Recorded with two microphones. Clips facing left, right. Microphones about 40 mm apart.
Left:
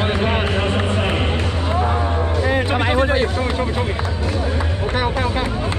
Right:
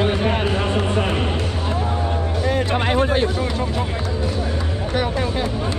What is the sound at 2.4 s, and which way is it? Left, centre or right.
Music, centre.